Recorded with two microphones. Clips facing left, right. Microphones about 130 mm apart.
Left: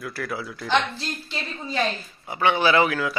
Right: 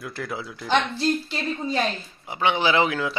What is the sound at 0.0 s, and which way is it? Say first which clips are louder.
Speech: left 1 dB; 20° right (ahead or behind).